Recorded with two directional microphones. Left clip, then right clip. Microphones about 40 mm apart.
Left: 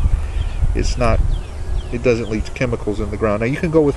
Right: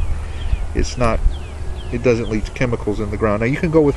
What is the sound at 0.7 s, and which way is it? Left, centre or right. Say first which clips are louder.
Speech: even; right.